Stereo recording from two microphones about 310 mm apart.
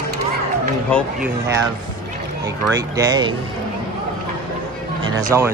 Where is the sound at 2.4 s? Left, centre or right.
Centre.